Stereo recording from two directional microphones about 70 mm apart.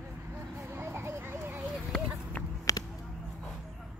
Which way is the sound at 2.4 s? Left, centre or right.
Left.